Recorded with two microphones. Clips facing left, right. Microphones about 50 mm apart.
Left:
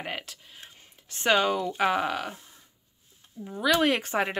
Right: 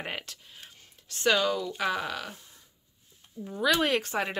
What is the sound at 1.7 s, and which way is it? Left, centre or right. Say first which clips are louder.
Speech: left 5 dB; left.